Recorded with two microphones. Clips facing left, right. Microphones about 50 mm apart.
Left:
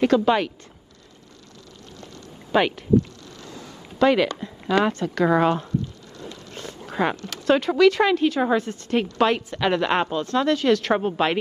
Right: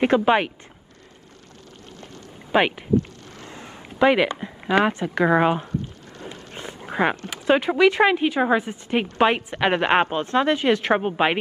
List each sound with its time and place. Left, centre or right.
0.0 s speech: right
2.5 s speech: right
3.0 s a sound: right
4.0 s a woman's voice: right
6.5 s dog: right
7.4 s a woman's voice: right